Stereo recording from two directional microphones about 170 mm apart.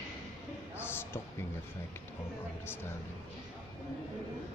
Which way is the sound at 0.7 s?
15° left (ahead or behind).